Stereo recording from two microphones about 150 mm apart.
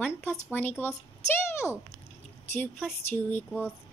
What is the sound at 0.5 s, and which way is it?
Speech, 15° left (ahead or behind).